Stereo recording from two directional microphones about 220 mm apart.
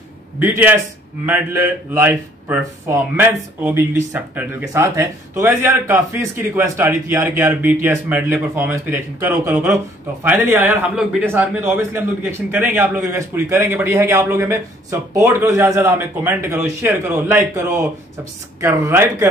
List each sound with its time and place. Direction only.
0.4 s speech: 10° right (ahead or behind)